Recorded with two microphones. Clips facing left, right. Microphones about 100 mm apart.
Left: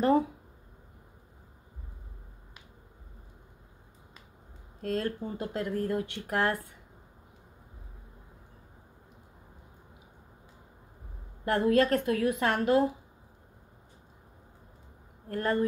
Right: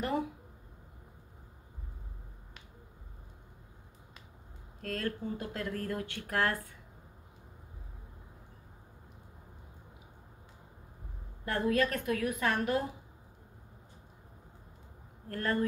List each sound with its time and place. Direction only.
4.8 s speech: 25° left (ahead or behind)
11.4 s speech: 30° left (ahead or behind)
15.2 s speech: 25° left (ahead or behind)